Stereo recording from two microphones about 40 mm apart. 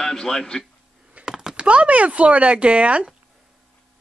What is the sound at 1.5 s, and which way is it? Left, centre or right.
Speech, right.